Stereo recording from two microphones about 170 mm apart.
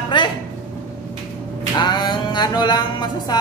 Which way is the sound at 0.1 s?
30° left (ahead or behind).